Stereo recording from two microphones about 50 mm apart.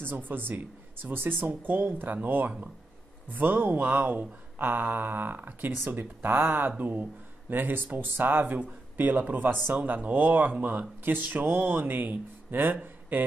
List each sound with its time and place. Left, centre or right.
0.0 s a man's voice: right